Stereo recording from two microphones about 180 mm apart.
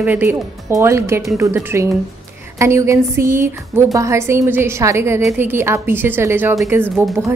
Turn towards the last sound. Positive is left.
turn(degrees=-15)  # may be behind; listen again after turning